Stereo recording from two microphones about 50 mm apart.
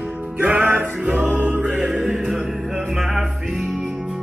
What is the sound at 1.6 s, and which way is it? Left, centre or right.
Music, centre.